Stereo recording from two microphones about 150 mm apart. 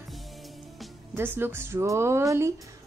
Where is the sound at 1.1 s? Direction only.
15° right (ahead or behind).